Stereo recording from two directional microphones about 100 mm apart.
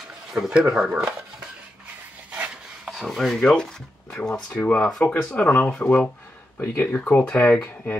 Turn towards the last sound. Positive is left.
turn(degrees=20)  # may be behind; listen again after turning